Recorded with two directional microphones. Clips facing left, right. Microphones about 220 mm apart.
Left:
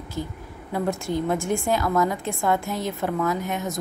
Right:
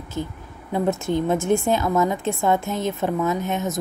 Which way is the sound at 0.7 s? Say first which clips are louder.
Right 3 dB; 20° right (ahead or behind).